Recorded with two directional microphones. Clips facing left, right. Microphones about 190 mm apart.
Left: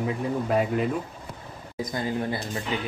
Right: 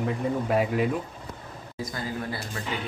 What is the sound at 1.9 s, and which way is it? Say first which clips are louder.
Speech: left 5 dB; 20° left (ahead or behind).